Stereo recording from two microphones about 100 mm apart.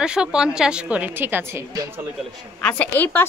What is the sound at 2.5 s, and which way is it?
Speech, 15° left (ahead or behind).